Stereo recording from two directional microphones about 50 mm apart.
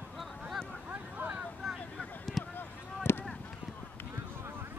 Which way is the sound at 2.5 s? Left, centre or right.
Left.